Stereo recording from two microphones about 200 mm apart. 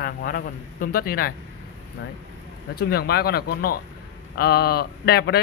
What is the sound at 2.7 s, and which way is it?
Speech, 50° left (ahead or behind).